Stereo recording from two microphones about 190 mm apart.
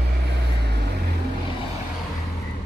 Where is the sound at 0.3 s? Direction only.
60° right (ahead or behind).